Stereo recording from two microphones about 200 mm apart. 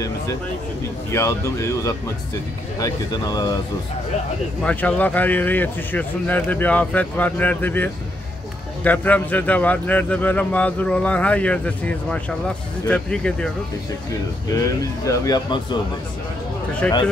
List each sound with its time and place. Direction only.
1.1 s a man's voice: 15° left (ahead or behind)
4.6 s a man's voice: 5° left (ahead or behind)
14.5 s a man's voice: 15° left (ahead or behind)
16.8 s speech: 5° left (ahead or behind)